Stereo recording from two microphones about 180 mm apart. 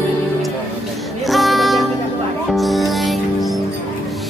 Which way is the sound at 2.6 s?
Centre (ahead or behind).